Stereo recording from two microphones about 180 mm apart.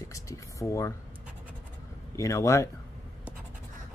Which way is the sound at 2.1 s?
15° left (ahead or behind).